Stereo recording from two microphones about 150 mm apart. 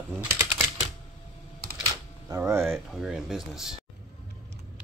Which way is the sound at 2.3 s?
20° right (ahead or behind).